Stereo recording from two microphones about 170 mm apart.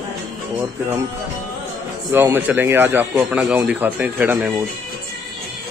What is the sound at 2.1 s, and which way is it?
A man's voice, 15° right (ahead or behind).